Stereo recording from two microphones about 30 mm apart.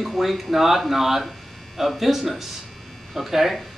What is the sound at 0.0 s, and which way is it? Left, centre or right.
Speech, centre.